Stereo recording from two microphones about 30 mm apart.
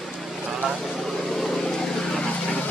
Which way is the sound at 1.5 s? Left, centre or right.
Centre.